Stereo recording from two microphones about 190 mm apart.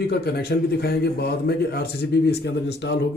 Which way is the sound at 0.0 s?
55° left (ahead or behind).